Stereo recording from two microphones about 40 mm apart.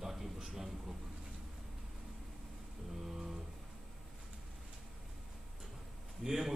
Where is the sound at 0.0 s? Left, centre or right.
Centre.